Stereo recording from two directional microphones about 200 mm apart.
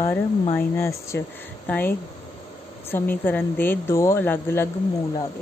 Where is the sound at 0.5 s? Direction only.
15° left (ahead or behind).